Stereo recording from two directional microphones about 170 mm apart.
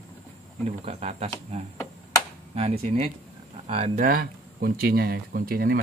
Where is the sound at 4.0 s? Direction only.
60° right (ahead or behind).